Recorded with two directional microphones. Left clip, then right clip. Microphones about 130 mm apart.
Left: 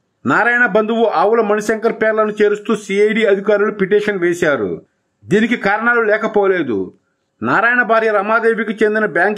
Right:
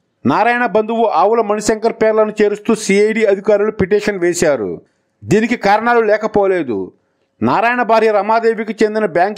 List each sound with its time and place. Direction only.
0.3 s a man's voice: 40° right (ahead or behind)